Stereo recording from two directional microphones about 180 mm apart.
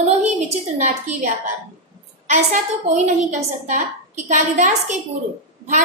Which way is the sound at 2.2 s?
45° right (ahead or behind).